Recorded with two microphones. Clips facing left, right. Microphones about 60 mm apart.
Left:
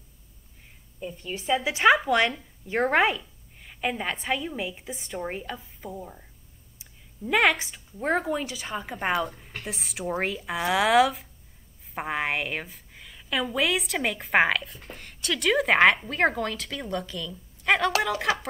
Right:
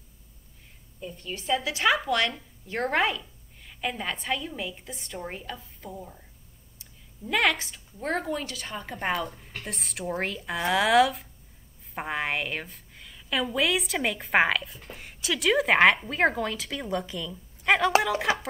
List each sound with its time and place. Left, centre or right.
1.0 s a woman's voice: centre
1.6 s a woman's voice: left; by 17.9 s centre
18.3 s speech: right